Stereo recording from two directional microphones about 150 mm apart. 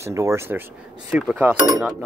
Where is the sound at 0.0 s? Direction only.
20° right (ahead or behind).